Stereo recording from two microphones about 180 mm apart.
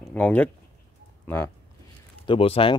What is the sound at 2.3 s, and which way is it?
Speech, 30° left (ahead or behind).